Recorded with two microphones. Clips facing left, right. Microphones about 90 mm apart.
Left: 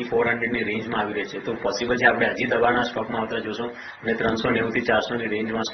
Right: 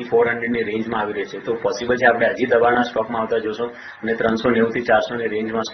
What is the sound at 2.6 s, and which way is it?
Speech, centre (ahead or behind).